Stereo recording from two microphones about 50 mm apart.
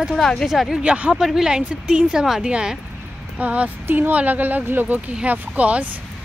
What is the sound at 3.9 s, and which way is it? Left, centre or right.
Speech, right.